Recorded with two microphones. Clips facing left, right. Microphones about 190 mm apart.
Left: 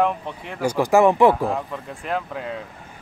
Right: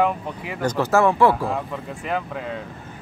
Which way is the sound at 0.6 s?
10° left (ahead or behind).